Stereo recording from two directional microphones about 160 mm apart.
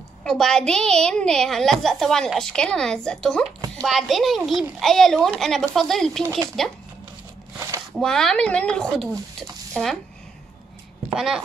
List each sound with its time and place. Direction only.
0.2 s a woman's voice: 5° left (ahead or behind)
7.5 s a sound: 20° right (ahead or behind)
7.9 s a woman's voice: 5° left (ahead or behind)
11.1 s a woman's voice: 5° right (ahead or behind)